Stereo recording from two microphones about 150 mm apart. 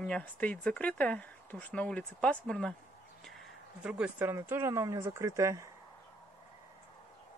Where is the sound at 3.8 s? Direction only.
5° right (ahead or behind).